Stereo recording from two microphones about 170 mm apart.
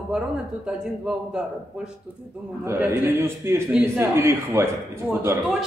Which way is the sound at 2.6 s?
15° right (ahead or behind).